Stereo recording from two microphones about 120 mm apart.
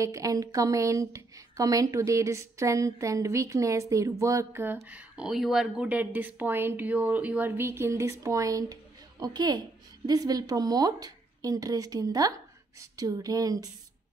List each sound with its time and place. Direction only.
0.0 s a woman's voice: 25° right (ahead or behind)